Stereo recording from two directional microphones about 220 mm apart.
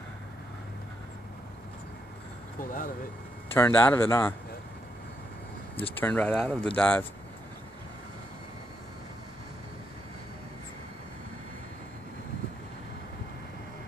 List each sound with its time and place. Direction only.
2.6 s speech: 40° left (ahead or behind)
3.5 s speech: 10° left (ahead or behind)
5.9 s speech: 10° left (ahead or behind)